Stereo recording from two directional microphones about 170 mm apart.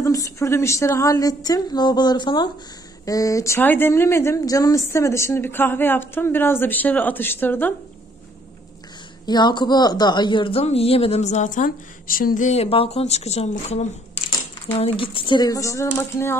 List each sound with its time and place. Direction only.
0.0 s a woman's voice: 20° left (ahead or behind)
9.2 s a woman's voice: 25° left (ahead or behind)